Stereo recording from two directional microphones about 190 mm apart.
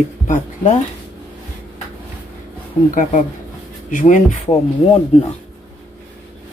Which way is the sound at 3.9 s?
45° left (ahead or behind).